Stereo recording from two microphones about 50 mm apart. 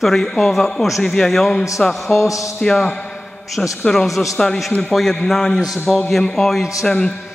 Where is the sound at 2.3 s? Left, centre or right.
Left.